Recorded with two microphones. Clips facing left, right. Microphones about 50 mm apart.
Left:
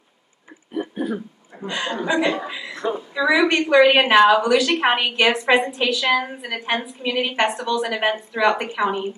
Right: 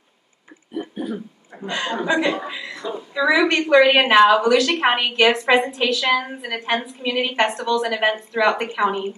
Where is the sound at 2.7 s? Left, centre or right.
Left.